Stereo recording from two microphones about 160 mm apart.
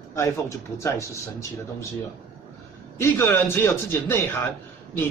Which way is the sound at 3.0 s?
15° left (ahead or behind).